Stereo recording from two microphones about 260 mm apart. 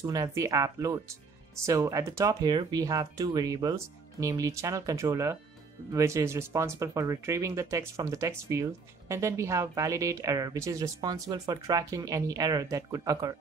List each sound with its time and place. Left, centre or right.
0.0 s speech: centre